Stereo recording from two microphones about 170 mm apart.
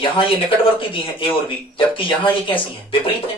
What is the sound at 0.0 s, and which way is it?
Speech, 30° left (ahead or behind).